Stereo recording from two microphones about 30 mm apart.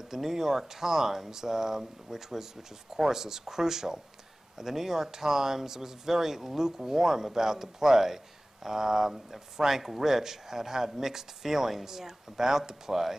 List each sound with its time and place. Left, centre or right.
0.1 s speech: centre